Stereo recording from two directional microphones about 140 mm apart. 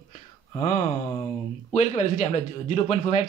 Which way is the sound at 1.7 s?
55° left (ahead or behind).